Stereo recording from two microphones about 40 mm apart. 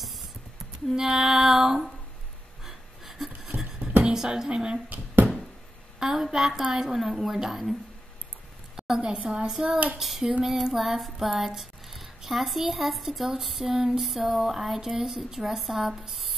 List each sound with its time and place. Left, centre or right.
0.9 s a woman's voice: centre
2.6 s a sound: centre
3.5 s music: right
4.0 s speech: centre
5.9 s a woman's voice: centre
8.7 s a woman's voice: centre
9.9 s child singing: centre